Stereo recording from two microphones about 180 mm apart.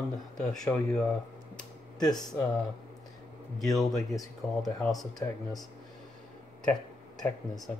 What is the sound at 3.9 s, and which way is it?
Speech, 20° left (ahead or behind).